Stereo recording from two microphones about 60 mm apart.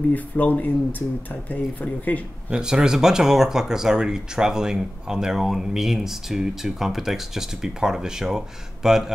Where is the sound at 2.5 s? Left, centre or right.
Centre.